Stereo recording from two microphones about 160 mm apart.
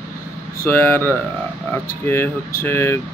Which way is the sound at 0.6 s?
15° left (ahead or behind).